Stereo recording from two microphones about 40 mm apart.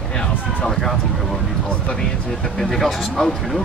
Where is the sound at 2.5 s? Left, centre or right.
Centre.